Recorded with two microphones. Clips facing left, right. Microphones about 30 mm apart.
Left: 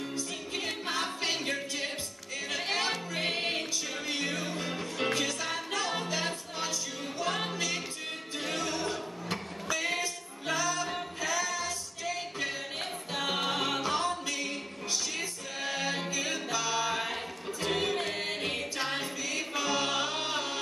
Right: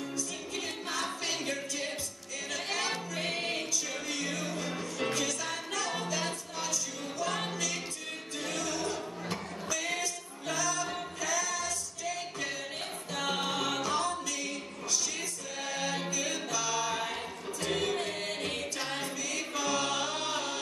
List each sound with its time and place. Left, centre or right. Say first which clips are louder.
0.6 s music: left 3 dB; left
7.3 s music: left 2 dB; centre